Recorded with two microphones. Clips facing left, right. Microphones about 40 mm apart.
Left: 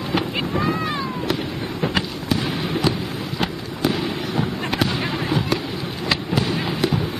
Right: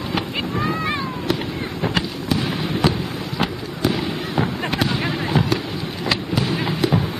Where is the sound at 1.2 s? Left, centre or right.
Centre.